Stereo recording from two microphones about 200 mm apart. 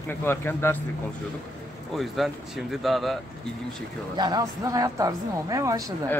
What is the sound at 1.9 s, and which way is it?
Speech, centre (ahead or behind).